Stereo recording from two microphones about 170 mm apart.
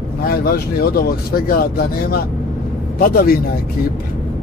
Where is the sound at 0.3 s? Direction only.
60° left (ahead or behind).